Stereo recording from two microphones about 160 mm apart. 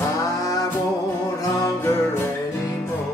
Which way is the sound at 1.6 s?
20° left (ahead or behind).